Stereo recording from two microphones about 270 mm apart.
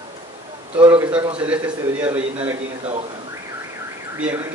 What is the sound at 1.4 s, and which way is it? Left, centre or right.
A man's voice, centre.